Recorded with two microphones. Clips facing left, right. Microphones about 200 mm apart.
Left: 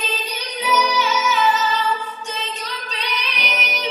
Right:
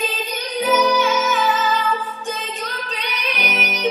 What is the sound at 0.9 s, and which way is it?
Music, 50° right (ahead or behind).